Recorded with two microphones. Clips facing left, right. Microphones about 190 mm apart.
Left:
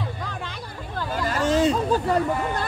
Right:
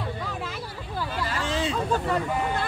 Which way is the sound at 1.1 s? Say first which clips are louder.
Left 8 dB; 45° left (ahead or behind).